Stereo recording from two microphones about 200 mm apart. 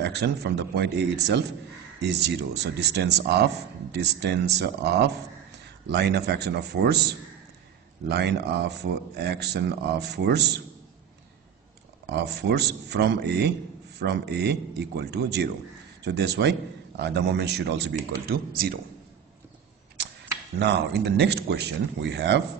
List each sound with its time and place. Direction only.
0.0 s a man's voice: 55° right (ahead or behind)
12.1 s a man's voice: 55° right (ahead or behind)
20.5 s a man's voice: 60° right (ahead or behind)